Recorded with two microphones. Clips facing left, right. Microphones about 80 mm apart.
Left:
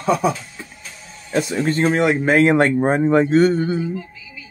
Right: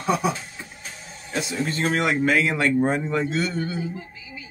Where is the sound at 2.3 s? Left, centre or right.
Left.